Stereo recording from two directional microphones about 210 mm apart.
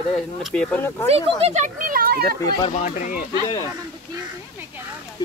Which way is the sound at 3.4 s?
15° left (ahead or behind).